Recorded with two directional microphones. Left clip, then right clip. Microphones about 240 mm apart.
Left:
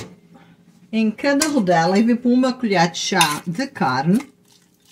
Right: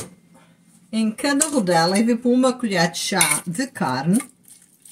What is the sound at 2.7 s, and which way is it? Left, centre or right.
Speech, centre.